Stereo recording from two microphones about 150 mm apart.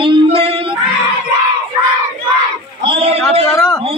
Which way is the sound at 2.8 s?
40° right (ahead or behind).